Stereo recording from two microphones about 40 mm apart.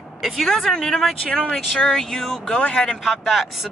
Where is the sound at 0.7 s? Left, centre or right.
Centre.